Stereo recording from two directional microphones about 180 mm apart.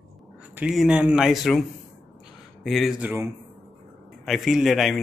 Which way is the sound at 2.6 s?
Centre (ahead or behind).